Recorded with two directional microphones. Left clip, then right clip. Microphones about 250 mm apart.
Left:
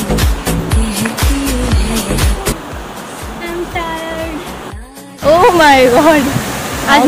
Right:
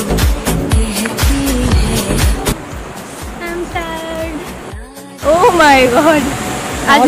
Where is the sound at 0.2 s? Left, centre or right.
Centre.